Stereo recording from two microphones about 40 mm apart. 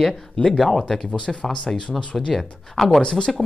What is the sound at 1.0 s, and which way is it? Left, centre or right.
Speech, left.